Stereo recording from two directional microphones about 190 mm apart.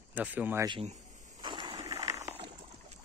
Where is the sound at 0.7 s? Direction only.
30° right (ahead or behind).